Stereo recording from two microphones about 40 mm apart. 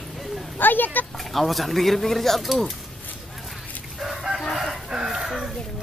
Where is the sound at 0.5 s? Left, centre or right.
Left.